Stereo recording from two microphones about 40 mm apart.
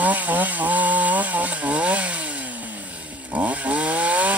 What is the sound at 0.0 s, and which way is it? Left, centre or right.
Chainsaw, right.